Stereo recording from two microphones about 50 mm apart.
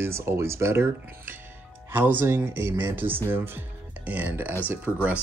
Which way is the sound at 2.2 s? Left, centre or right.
Right.